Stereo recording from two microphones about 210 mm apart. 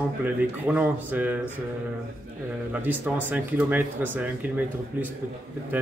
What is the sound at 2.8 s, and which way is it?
Speech, 10° right (ahead or behind).